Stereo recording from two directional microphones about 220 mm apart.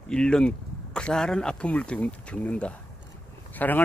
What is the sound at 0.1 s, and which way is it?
Speech, 5° left (ahead or behind).